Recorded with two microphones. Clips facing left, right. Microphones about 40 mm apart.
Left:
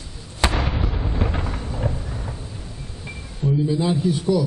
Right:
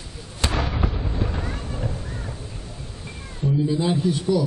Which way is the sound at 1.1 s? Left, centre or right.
Left.